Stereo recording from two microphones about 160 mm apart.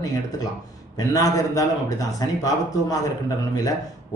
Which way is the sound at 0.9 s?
20° left (ahead or behind).